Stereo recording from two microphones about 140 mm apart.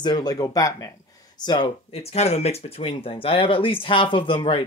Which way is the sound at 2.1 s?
45° left (ahead or behind).